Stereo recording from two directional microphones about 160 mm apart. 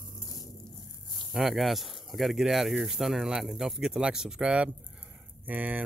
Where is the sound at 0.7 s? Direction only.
30° left (ahead or behind).